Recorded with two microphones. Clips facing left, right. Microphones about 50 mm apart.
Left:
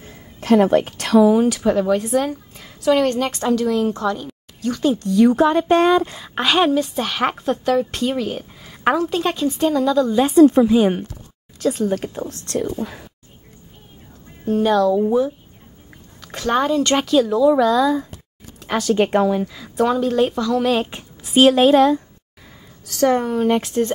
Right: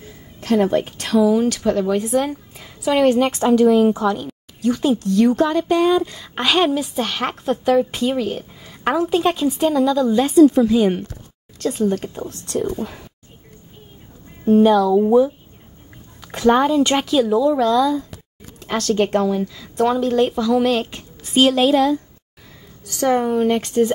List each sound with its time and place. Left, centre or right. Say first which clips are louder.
0.6 s a woman's voice: left 1 dB; left
1.3 s a woman's voice: left 1 dB; centre
5.4 s speech: left 2 dB; centre
5.7 s speech: left 1 dB; left
6.3 s a woman's voice: left 1 dB; centre
10.3 s speech: even; left
10.6 s speech: left 1 dB; centre
11.5 s a woman's voice: even; centre
14.6 s speech: right 1 dB; centre
16.2 s a woman's voice: right 4 dB; centre
19.7 s a woman's voice: even; centre
20.7 s a woman's voice: left 1 dB; centre
21.5 s speech: left 3 dB; left
22.8 s a woman's voice: even; centre